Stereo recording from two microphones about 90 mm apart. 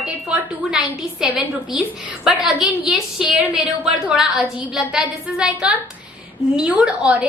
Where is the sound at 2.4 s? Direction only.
5° right (ahead or behind).